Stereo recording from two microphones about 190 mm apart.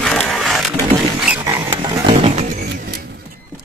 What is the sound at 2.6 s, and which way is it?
Vehicle, 65° right (ahead or behind).